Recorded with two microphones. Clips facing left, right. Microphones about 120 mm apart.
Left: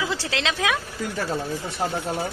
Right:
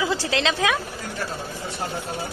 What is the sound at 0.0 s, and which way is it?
Speech, centre (ahead or behind).